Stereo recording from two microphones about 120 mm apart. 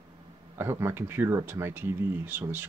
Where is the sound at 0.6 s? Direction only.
20° right (ahead or behind).